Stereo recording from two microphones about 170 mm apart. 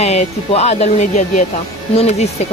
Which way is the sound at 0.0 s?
40° left (ahead or behind).